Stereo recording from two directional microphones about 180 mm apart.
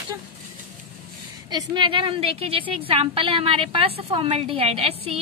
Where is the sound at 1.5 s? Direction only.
25° right (ahead or behind).